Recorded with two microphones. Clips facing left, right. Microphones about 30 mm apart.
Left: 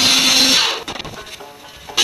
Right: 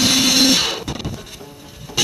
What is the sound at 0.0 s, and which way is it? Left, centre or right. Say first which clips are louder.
Music: left 1 dB; left.